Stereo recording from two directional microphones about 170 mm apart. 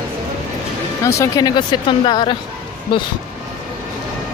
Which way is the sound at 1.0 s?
20° left (ahead or behind).